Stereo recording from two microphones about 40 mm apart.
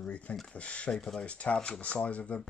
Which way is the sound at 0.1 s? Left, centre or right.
Left.